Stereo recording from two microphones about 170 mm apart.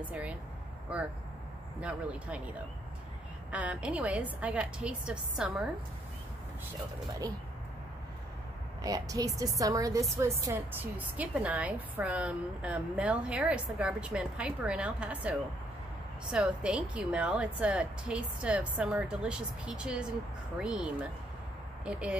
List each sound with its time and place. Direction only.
0.0 s a woman's voice: 10° right (ahead or behind)
1.8 s a woman's voice: 10° right (ahead or behind)
3.5 s a woman's voice: 10° right (ahead or behind)
8.8 s a woman's voice: 20° right (ahead or behind)